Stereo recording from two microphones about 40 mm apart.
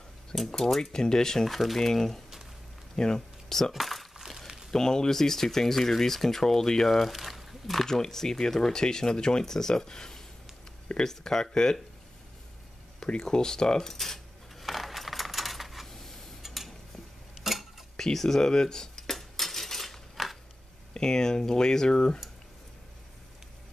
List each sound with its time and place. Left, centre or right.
0.3 s speech: centre
0.9 s speech: centre
1.5 s speech: centre
3.0 s a sound: centre
3.7 s speech: centre
4.2 s crumpling: centre
4.6 s speech: centre
13.0 s coin: centre
15.9 s a sound: centre
17.4 s dishes: centre
17.9 s speech: centre
19.1 s cutlery: centre
20.9 s speech: centre